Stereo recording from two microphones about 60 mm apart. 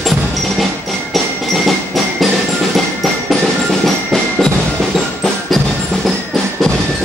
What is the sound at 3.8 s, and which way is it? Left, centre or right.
Percussion, centre.